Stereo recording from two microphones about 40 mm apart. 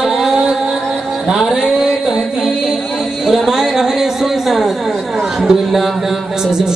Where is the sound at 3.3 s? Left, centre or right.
Centre.